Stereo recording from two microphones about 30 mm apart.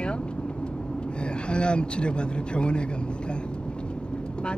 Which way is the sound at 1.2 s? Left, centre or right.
Left.